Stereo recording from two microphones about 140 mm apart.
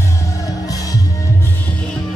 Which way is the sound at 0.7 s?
25° left (ahead or behind).